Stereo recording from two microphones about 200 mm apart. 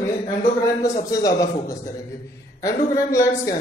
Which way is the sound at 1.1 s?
15° left (ahead or behind).